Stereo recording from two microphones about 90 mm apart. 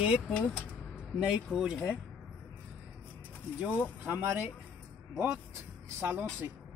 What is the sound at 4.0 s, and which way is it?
Speech, 25° right (ahead or behind).